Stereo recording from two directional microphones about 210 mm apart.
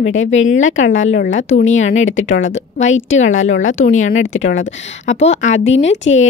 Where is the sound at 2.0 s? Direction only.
65° left (ahead or behind).